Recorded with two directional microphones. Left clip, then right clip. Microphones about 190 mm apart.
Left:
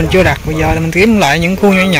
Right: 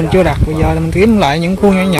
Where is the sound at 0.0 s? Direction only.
10° right (ahead or behind).